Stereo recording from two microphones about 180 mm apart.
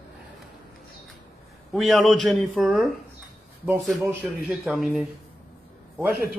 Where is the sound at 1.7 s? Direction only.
Centre (ahead or behind).